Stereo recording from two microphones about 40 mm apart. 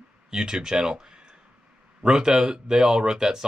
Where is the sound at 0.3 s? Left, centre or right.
Centre.